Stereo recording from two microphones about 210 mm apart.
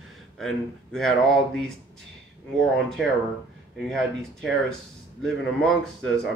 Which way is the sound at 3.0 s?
Centre (ahead or behind).